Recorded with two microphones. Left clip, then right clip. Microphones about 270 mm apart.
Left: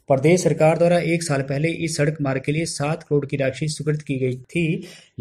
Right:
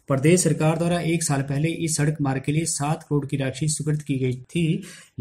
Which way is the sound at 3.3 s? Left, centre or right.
Right.